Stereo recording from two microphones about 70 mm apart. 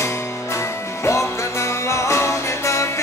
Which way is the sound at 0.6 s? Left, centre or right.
Left.